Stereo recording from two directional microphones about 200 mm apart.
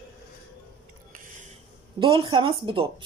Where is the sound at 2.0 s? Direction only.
25° right (ahead or behind).